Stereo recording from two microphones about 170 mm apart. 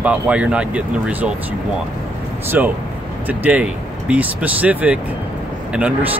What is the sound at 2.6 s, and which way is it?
Speech, 10° right (ahead or behind).